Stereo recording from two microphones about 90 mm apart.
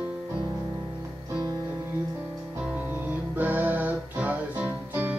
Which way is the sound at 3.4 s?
20° right (ahead or behind).